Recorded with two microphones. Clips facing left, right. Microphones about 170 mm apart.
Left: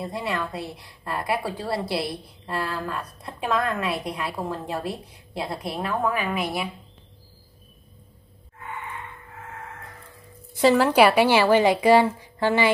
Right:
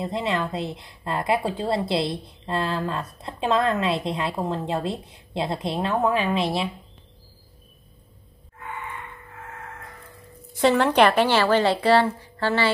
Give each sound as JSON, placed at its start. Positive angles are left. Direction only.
{"t": 0.0, "sound": "a woman's voice", "side_deg": -20}
{"t": 10.6, "sound": "a woman's voice", "side_deg": 0}